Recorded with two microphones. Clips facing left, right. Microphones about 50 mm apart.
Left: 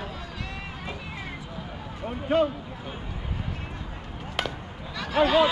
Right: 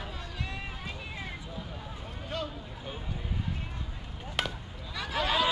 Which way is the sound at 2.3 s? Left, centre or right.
Left.